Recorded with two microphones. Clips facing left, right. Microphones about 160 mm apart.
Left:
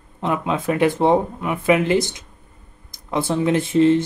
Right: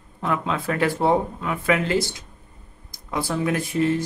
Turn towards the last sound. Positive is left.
turn(degrees=25)  # may be behind; listen again after turning